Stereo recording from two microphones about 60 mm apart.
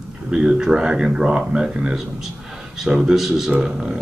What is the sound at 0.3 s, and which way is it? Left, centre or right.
A man's voice, centre.